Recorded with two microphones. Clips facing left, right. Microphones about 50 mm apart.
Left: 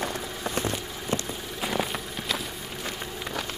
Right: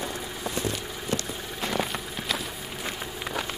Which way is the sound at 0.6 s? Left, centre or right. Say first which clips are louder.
Left 1 dB; left.